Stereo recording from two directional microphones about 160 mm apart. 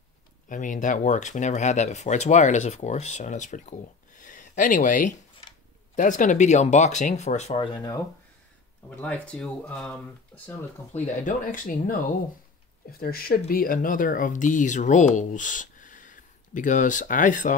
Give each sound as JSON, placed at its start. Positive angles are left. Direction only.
{"t": 0.5, "sound": "speech", "side_deg": 55}
{"t": 7.6, "sound": "speech", "side_deg": 25}
{"t": 8.9, "sound": "speech", "side_deg": 10}
{"t": 10.9, "sound": "speech", "side_deg": 55}
{"t": 13.0, "sound": "speech", "side_deg": 70}